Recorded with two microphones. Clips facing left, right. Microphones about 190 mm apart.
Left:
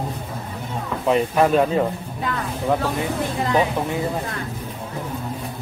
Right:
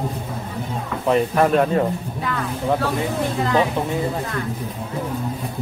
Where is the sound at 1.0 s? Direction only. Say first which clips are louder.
Even; 5° left (ahead or behind).